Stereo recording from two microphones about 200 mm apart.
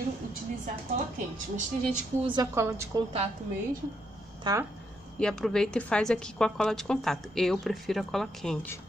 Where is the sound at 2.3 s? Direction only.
15° right (ahead or behind).